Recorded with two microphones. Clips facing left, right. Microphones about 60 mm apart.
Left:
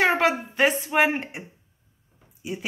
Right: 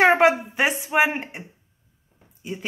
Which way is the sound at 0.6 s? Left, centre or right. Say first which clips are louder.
Even; centre.